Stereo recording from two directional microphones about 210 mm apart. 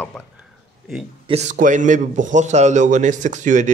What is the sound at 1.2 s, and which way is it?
A man's voice, 35° right (ahead or behind).